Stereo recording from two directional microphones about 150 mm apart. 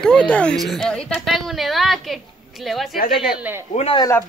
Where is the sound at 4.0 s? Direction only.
20° left (ahead or behind).